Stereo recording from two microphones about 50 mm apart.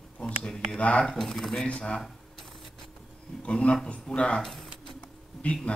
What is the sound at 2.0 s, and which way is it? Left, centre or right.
Camera, centre.